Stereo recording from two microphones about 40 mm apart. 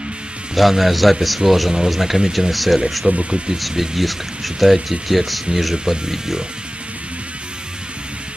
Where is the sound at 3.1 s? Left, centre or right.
Right.